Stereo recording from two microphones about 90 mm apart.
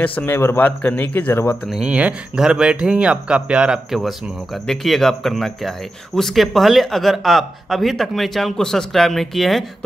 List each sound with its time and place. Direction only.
0.0 s a man's voice: 20° left (ahead or behind)
1.7 s speech: 10° right (ahead or behind)